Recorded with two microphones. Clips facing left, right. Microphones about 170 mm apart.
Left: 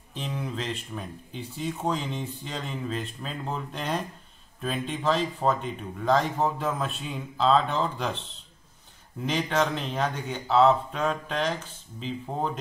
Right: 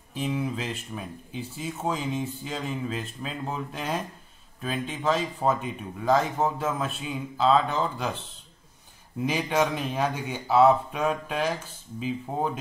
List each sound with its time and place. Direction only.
0.1 s speech: 5° right (ahead or behind)
9.2 s speech: 10° right (ahead or behind)